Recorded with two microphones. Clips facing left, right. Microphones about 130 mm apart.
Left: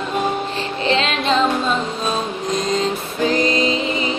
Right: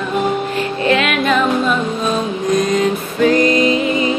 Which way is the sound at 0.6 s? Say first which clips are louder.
Right 5 dB; 25° left (ahead or behind).